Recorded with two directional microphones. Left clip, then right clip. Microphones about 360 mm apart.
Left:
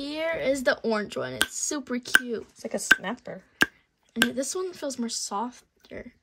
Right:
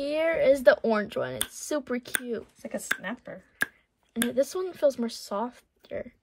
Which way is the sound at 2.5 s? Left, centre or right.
Centre.